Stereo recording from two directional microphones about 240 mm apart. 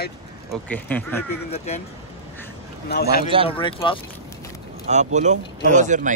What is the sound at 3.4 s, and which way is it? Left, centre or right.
Speech, left.